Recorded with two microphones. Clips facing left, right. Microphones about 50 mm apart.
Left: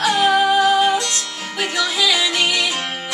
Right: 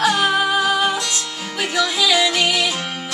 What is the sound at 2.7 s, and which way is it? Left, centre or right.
Music, centre.